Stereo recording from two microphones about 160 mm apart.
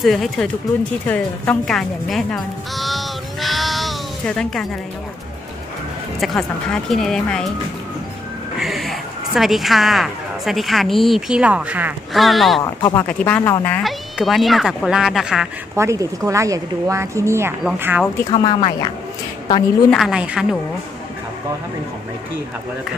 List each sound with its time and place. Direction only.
0.0 s speech: centre (ahead or behind)
6.1 s speech: centre (ahead or behind)
8.5 s speech: centre (ahead or behind)
12.6 s speech: 20° left (ahead or behind)
13.8 s speech: centre (ahead or behind)
15.7 s speech: 20° right (ahead or behind)
18.3 s speech: 30° left (ahead or behind)
19.9 s speech: 5° right (ahead or behind)